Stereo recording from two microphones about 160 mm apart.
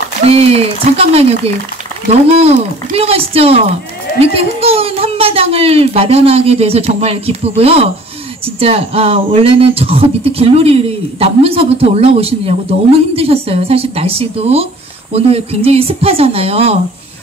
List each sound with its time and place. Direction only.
0.2 s speech: 40° right (ahead or behind)
3.0 s speech: 40° right (ahead or behind)